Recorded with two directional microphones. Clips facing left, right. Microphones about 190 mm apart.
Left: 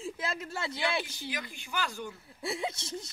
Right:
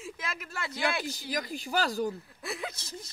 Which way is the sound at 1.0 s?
40° right (ahead or behind).